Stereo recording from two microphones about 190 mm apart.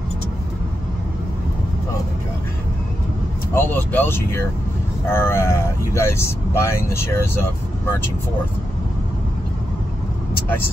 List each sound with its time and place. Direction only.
3.5 s speech: 10° left (ahead or behind)